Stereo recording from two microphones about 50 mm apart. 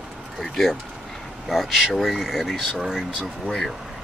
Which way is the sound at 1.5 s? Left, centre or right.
Centre.